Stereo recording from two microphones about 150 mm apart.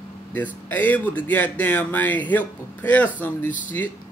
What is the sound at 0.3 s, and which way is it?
Speech, 10° left (ahead or behind).